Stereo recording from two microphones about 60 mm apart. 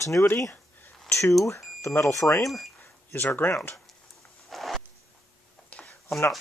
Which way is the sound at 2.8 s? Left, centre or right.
Left.